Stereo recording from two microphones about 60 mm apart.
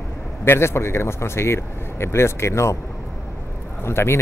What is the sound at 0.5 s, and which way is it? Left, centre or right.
Speech, left.